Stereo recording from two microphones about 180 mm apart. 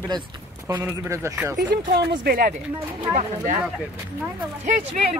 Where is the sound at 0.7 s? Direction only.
15° right (ahead or behind).